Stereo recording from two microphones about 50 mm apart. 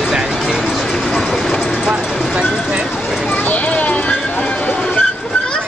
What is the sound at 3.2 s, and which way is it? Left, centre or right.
Clip-clop, left.